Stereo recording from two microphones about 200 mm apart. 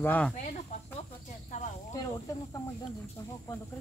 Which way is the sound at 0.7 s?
35° left (ahead or behind).